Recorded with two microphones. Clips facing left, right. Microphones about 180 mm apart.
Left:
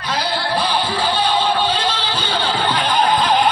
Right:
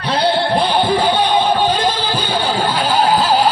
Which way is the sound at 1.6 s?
15° right (ahead or behind).